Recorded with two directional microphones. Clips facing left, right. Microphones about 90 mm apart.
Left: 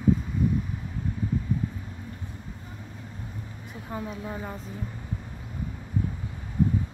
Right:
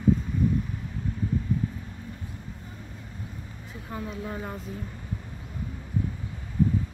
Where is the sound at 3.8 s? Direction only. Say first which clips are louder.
Even; 5° left (ahead or behind).